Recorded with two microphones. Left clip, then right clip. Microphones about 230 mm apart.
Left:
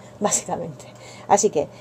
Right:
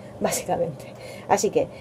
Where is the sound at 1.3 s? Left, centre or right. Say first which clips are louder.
Left 3 dB; left.